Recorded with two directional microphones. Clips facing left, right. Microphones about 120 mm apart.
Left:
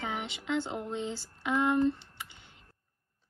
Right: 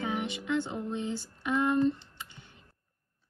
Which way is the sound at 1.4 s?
20° left (ahead or behind).